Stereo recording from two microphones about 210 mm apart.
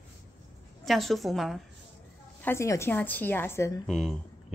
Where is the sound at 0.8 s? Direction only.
Centre (ahead or behind).